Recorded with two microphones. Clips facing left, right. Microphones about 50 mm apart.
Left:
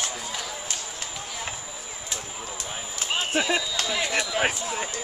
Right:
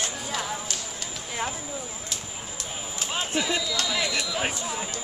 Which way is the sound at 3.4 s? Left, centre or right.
Left.